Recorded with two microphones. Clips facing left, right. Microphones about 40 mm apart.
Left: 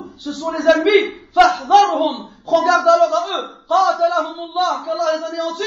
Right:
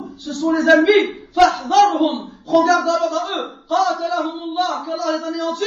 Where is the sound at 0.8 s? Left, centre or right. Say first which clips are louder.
Even; left.